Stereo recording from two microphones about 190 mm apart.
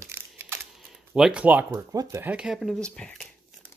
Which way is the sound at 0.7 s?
5° right (ahead or behind).